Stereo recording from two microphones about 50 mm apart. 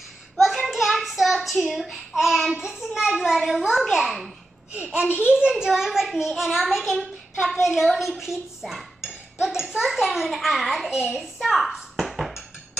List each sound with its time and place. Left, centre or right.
0.4 s hands: centre
1.7 s dishes: centre
2.6 s a child's voice: centre
3.2 s dishes: centre
4.7 s a child's voice: right
5.5 s dishes: centre
10.9 s a child's voice: centre
11.3 s dishes: centre
12.0 s a sound: centre